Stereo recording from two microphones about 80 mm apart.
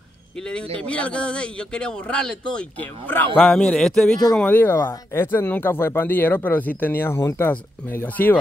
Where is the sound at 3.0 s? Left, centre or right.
Left.